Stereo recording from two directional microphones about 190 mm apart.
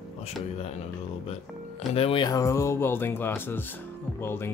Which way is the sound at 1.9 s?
30° left (ahead or behind).